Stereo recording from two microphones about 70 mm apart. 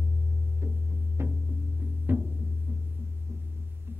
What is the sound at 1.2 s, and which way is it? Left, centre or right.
Music, right.